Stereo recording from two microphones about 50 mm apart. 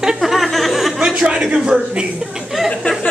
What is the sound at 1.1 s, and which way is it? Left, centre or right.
Speech, centre.